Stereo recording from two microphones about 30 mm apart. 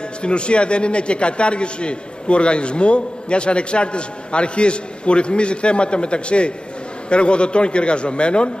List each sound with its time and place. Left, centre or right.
0.2 s a man's voice: left